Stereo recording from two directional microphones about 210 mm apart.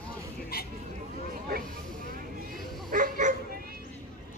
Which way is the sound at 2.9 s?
40° right (ahead or behind).